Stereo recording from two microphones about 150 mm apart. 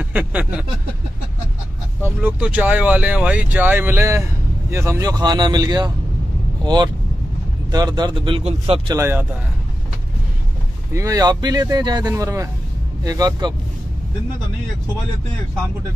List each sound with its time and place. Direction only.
0.0 s a sound: 10° right (ahead or behind)
2.2 s speech: 10° right (ahead or behind); by 8.9 s 40° right (ahead or behind)
8.9 s speech: 15° right (ahead or behind)
10.9 s speech: 20° right (ahead or behind)